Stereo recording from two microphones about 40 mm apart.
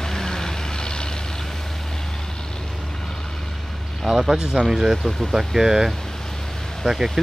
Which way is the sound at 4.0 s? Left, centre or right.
Centre.